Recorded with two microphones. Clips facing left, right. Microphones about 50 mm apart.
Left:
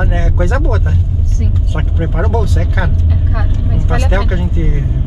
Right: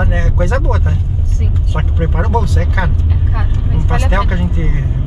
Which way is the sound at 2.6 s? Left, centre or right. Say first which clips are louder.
Even; centre.